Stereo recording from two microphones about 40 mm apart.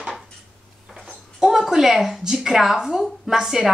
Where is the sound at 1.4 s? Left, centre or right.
Centre.